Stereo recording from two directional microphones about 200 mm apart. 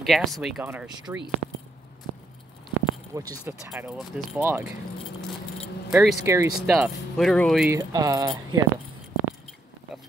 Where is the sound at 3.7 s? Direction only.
5° right (ahead or behind).